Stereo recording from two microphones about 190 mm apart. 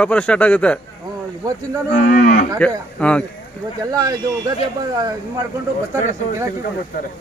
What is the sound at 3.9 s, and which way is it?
Speech, 20° right (ahead or behind).